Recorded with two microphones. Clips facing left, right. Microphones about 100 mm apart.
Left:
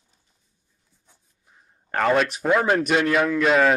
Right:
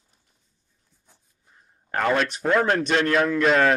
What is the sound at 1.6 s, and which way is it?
A man's voice, centre (ahead or behind).